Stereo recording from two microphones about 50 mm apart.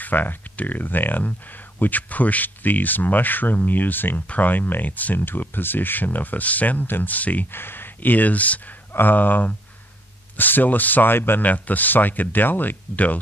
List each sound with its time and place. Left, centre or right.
0.0 s speech: left
7.5 s speech: left
11.4 s speech: left